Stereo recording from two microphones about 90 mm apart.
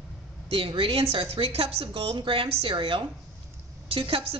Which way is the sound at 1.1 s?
90° right.